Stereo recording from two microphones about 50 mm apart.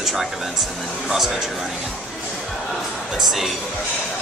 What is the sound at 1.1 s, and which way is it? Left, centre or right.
Speech, centre.